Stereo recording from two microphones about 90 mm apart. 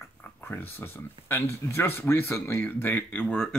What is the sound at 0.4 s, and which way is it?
Speech, 25° left (ahead or behind).